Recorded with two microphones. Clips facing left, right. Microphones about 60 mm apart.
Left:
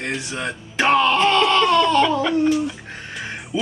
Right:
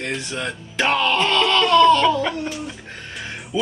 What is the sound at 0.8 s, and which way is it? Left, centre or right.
Laughter, centre.